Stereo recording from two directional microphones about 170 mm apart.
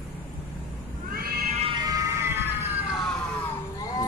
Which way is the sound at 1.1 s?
60° right (ahead or behind).